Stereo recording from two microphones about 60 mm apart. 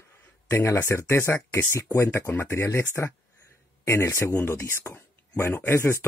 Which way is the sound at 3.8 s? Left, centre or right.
Left.